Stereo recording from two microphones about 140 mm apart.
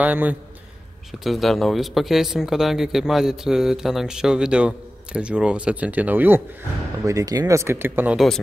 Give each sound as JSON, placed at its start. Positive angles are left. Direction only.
{"t": 0.0, "sound": "a man's voice", "side_deg": -10}
{"t": 1.2, "sound": "speech", "side_deg": 0}
{"t": 7.1, "sound": "speech", "side_deg": -25}